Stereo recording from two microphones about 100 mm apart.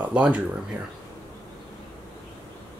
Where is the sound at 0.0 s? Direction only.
15° right (ahead or behind).